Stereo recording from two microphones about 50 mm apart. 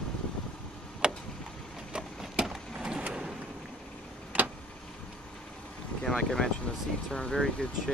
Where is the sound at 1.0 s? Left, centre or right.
Centre.